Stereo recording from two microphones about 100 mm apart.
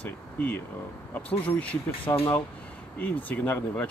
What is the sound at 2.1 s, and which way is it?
Speech, 30° left (ahead or behind).